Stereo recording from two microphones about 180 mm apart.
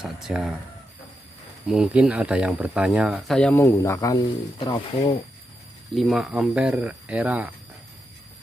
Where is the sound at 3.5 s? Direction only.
15° left (ahead or behind).